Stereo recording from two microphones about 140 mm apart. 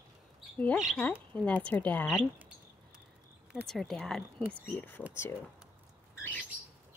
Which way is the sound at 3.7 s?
5° left (ahead or behind).